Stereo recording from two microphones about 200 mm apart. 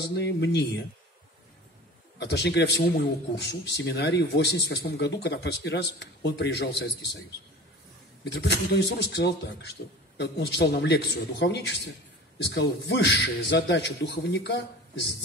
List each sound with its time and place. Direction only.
0.1 s a man's voice: 60° left (ahead or behind)
2.1 s a man's voice: 55° left (ahead or behind)
8.2 s a man's voice: 60° left (ahead or behind)